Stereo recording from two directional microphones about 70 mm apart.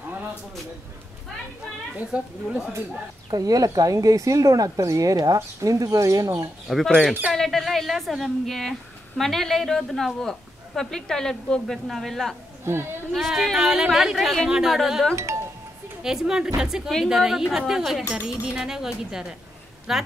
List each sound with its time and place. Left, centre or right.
0.0 s a sound: right
2.0 s speech: centre
3.3 s speech: right
7.3 s a woman's voice: centre
12.7 s a woman's voice: right
13.1 s a woman's voice: centre